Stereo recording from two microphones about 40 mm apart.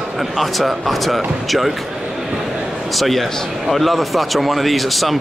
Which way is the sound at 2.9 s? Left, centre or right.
Centre.